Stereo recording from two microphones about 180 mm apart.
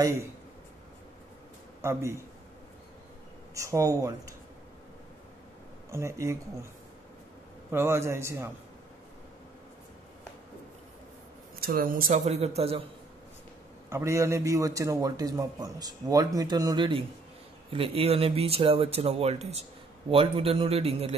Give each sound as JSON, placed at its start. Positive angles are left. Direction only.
{"t": 1.8, "sound": "a man's voice", "side_deg": -15}
{"t": 3.5, "sound": "a man's voice", "side_deg": -15}
{"t": 5.9, "sound": "a man's voice", "side_deg": -15}
{"t": 7.7, "sound": "a man's voice", "side_deg": -15}
{"t": 11.6, "sound": "speech", "side_deg": -55}
{"t": 12.1, "sound": "speech", "side_deg": -35}
{"t": 13.8, "sound": "a man's voice", "side_deg": -15}